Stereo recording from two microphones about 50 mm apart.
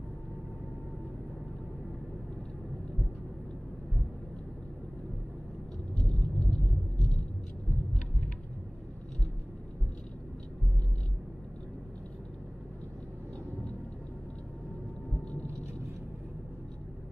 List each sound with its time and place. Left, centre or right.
5.9 s vehicle: centre